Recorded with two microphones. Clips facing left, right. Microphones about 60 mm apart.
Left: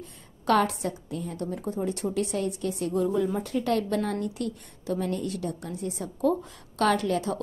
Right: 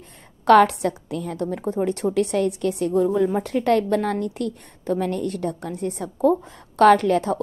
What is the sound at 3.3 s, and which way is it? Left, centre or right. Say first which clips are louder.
A woman's voice: right 7 dB; right.